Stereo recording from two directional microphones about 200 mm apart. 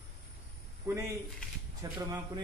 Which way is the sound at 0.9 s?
15° right (ahead or behind).